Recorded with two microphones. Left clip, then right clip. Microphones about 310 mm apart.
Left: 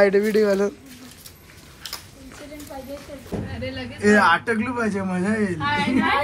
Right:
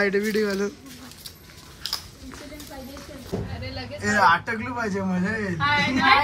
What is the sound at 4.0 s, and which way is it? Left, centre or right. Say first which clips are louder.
Speech: left 2 dB; centre.